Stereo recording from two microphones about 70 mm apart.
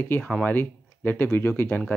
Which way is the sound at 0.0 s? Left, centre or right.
Left.